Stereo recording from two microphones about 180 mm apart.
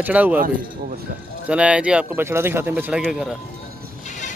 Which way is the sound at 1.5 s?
5° right (ahead or behind).